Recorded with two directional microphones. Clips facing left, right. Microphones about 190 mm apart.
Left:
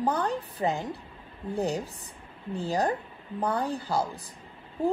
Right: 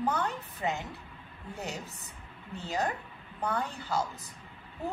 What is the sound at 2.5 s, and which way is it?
A woman's voice, 35° left (ahead or behind).